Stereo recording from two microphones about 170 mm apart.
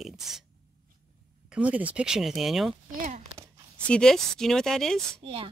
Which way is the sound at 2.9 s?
50° right (ahead or behind).